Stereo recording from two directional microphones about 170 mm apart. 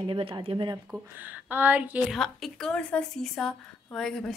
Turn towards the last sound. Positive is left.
turn(degrees=5)  # may be behind; listen again after turning